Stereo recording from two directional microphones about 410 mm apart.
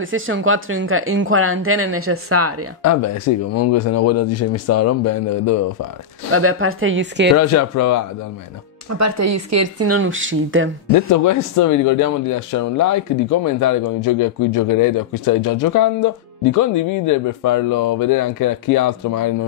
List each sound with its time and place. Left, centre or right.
0.0 s speech: right
2.8 s speech: left
6.3 s speech: right
7.3 s speech: left
8.9 s speech: right
10.9 s speech: left